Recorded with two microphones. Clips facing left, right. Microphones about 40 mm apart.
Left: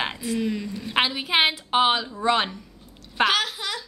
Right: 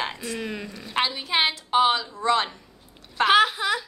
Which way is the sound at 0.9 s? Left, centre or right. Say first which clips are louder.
Left 2 dB; centre.